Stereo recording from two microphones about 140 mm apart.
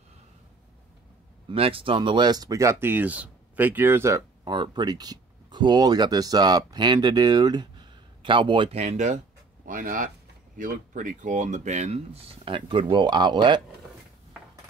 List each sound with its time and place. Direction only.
1.5 s speech: 40° right (ahead or behind); by 4.2 s 15° right (ahead or behind)
4.5 s speech: 30° right (ahead or behind); by 9.2 s 60° right (ahead or behind)
9.7 s speech: 70° right (ahead or behind); by 13.6 s 30° right (ahead or behind)